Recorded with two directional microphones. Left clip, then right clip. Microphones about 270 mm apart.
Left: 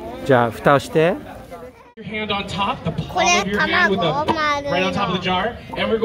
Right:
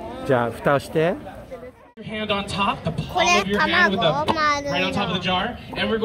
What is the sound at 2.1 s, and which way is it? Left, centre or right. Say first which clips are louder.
Speech: left 1 dB; right.